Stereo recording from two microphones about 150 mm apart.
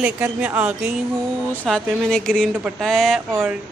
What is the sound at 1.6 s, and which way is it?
Speech, centre (ahead or behind).